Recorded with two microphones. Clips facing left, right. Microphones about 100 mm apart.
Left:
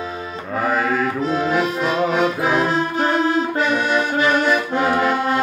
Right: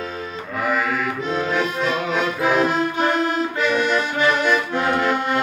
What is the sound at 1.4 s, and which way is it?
Accordion, 5° left (ahead or behind).